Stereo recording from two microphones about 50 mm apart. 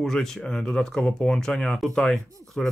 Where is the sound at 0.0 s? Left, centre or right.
Centre.